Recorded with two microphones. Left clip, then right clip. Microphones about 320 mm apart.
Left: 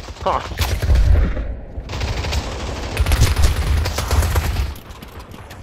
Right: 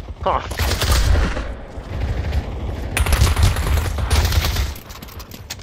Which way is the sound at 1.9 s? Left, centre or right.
Left.